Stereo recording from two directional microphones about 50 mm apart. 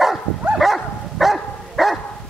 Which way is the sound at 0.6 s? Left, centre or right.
Centre.